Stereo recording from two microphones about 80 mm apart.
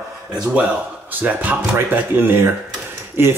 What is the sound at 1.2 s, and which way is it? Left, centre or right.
Speech, centre.